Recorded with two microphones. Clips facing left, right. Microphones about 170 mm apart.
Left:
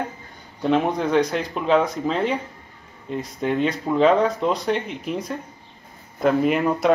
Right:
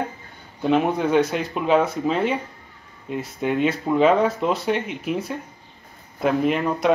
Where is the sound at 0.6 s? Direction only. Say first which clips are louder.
Right 1 dB; 5° right (ahead or behind).